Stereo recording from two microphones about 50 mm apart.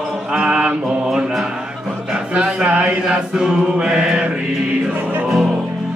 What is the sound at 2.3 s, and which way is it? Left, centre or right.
Chant, right.